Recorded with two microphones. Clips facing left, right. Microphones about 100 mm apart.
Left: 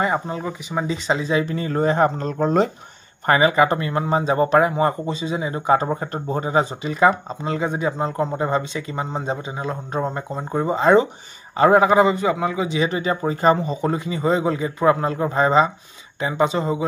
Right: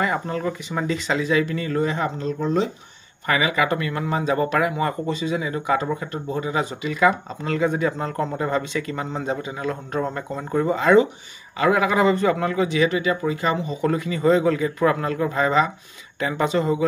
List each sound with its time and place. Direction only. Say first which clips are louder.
0.0 s speech: left 1 dB; 20° left (ahead or behind); by 2.7 s 50° left (ahead or behind)
3.3 s speech: left 5 dB; 35° left (ahead or behind); by 16.8 s 20° left (ahead or behind)